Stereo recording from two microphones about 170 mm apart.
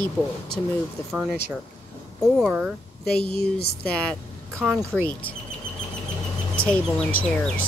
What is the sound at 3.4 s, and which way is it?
Speech, 65° left (ahead or behind).